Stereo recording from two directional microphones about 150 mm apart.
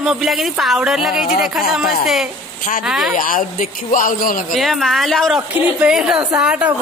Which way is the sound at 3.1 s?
65° left (ahead or behind).